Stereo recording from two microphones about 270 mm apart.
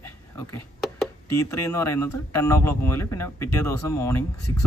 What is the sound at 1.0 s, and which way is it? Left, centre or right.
Speech, centre.